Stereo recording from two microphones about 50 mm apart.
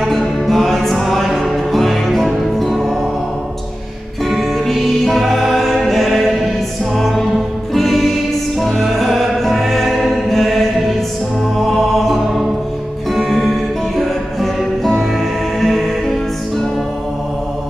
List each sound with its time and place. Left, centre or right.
0.0 s music: centre
4.3 s music: centre